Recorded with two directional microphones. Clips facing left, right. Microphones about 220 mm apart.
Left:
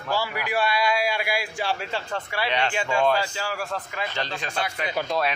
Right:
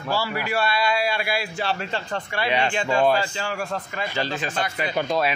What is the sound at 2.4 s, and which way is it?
Speech, 10° right (ahead or behind).